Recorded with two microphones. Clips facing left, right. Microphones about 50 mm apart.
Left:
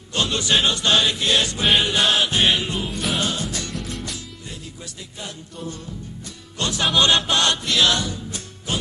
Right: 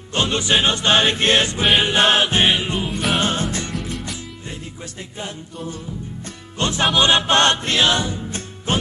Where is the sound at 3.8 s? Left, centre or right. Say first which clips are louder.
Right 3 dB; centre.